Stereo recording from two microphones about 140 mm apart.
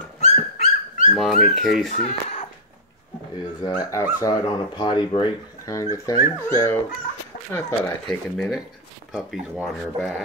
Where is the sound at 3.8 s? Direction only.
25° left (ahead or behind).